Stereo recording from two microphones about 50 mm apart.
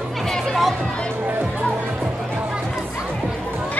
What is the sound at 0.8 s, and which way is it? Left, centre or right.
Music, right.